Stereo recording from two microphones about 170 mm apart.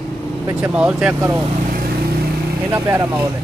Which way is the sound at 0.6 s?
5° right (ahead or behind).